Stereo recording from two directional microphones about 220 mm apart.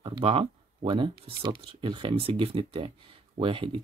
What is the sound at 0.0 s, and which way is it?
Speech, 25° right (ahead or behind).